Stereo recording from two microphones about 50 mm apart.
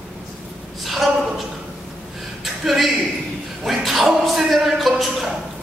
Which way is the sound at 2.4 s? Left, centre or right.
Centre.